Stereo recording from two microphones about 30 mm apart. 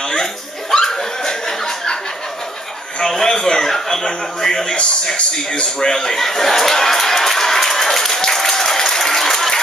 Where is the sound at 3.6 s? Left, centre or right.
Centre.